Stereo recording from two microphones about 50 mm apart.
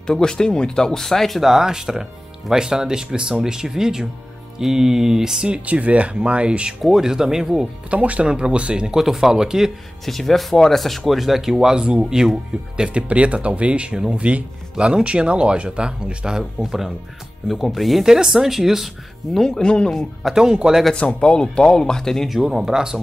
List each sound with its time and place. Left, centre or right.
0.0 s speech: centre
1.4 s speech: centre
5.7 s speech: right
6.8 s speech: centre
7.9 s speech: right
8.9 s speech: centre
10.0 s speech: centre
13.1 s speech: right; by 18.9 s centre
19.3 s speech: centre
20.3 s speech: centre
20.9 s speech: centre
22.3 s speech: centre